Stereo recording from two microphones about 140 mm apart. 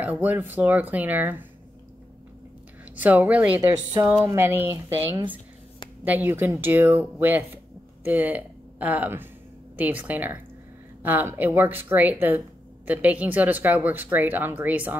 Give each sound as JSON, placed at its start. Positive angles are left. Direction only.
{"t": 0.0, "sound": "speech", "side_deg": -10}
{"t": 3.0, "sound": "speech", "side_deg": -10}